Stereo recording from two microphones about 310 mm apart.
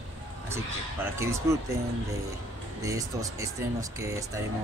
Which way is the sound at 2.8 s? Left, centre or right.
Centre.